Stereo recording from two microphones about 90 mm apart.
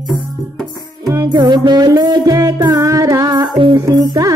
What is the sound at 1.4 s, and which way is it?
Music, 55° right (ahead or behind).